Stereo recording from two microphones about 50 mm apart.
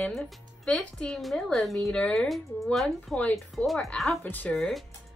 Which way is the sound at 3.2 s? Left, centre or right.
Left.